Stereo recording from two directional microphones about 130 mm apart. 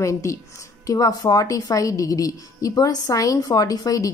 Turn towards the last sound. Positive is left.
turn(degrees=25)  # may be behind; listen again after turning